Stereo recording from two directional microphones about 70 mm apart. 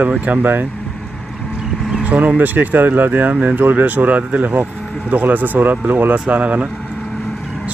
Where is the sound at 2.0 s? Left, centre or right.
Centre.